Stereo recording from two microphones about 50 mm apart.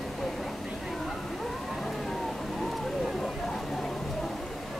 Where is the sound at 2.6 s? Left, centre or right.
Centre.